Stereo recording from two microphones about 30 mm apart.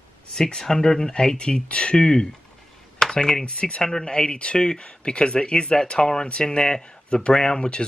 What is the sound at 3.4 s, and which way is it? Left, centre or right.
Speech, left.